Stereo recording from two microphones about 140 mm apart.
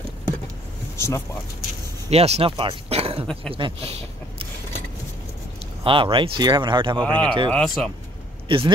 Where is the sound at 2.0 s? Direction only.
50° right (ahead or behind).